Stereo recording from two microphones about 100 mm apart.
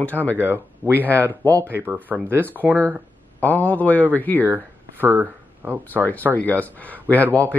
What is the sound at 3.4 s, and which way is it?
Speech, 15° left (ahead or behind).